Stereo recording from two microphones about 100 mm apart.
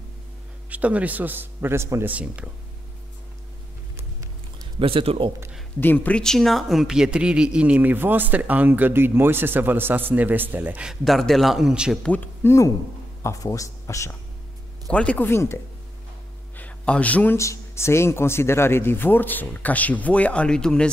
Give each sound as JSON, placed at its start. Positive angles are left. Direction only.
{"t": 0.7, "sound": "speech", "side_deg": -15}
{"t": 2.1, "sound": "speech", "side_deg": -10}
{"t": 4.7, "sound": "speech", "side_deg": -65}
{"t": 5.8, "sound": "speech", "side_deg": 15}
{"t": 12.4, "sound": "speech", "side_deg": 30}
{"t": 14.9, "sound": "speech", "side_deg": 10}
{"t": 16.5, "sound": "a sound", "side_deg": 15}
{"t": 17.4, "sound": "speech", "side_deg": 30}